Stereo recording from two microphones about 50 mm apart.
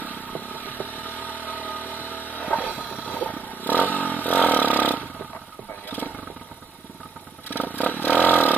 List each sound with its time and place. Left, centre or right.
0.1 s vehicle: left
2.6 s boat: right
3.1 s vehicle: left
4.7 s roar: left
7.4 s vehicle: left